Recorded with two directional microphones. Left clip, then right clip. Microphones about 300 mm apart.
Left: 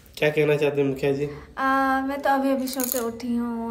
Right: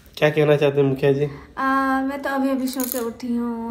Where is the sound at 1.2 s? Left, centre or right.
Centre.